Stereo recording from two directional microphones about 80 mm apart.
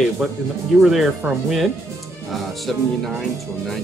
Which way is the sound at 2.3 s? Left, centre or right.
Centre.